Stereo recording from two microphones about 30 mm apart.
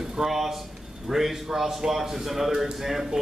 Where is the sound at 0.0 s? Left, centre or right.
Right.